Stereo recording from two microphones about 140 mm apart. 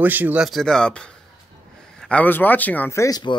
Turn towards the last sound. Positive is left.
turn(degrees=25)  # may be behind; listen again after turning